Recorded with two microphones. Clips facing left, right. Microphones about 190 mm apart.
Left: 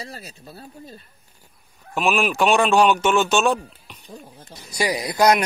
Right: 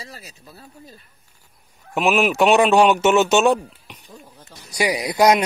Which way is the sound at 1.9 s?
20° right (ahead or behind).